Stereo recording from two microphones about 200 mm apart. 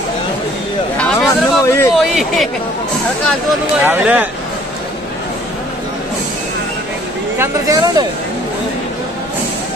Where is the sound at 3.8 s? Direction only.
5° right (ahead or behind).